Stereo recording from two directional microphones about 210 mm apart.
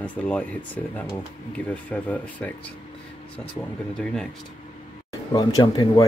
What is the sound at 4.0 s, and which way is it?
Speech, 5° left (ahead or behind).